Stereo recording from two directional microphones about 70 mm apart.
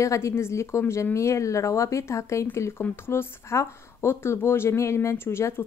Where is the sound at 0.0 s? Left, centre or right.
Left.